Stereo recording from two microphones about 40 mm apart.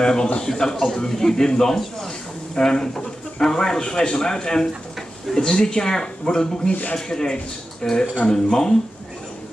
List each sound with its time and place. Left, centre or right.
0.0 s a man's voice: centre